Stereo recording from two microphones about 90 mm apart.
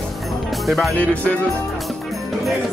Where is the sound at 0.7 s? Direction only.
Centre (ahead or behind).